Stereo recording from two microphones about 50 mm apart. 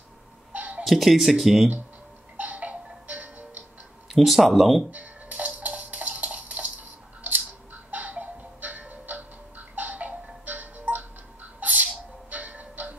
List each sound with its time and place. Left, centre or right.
0.5 s a sound: right
0.8 s speech: centre
2.4 s music: right
4.1 s speech: centre
4.9 s music: right